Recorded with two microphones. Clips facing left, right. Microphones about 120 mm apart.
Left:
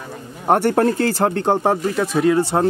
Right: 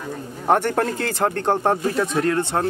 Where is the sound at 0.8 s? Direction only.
35° left (ahead or behind).